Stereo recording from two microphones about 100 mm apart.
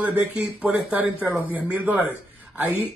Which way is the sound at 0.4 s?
20° right (ahead or behind).